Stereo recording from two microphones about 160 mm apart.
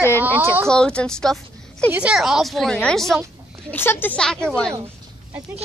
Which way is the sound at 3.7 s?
15° left (ahead or behind).